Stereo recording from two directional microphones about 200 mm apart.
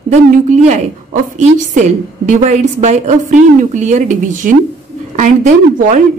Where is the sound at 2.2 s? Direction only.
35° right (ahead or behind).